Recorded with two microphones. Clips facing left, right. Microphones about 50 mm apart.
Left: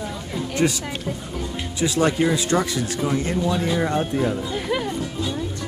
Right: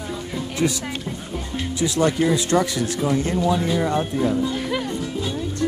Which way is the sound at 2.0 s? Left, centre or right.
Left.